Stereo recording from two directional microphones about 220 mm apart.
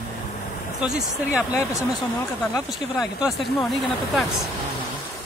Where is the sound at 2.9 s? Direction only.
Centre (ahead or behind).